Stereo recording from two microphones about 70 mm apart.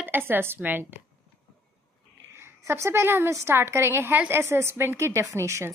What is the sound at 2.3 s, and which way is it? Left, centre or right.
A woman's voice, right.